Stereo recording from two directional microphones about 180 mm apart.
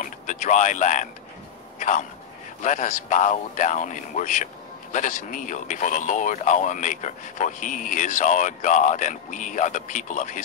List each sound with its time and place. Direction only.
0.0 s speech: 45° left (ahead or behind)